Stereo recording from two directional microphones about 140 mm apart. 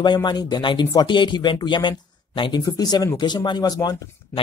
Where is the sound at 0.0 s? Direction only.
30° left (ahead or behind).